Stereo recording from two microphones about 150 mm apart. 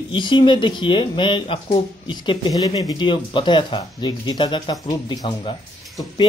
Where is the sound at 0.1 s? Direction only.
30° left (ahead or behind).